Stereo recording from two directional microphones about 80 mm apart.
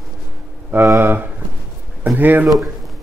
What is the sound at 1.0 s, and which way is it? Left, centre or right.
A man's voice, right.